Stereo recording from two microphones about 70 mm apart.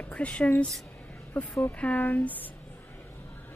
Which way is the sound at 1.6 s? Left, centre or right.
Left.